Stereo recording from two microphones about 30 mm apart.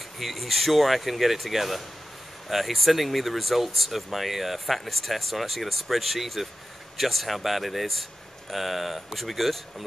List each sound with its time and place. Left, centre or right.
0.2 s speech: centre